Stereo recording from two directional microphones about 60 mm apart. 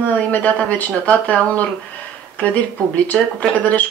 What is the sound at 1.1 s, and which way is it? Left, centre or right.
Speech, left.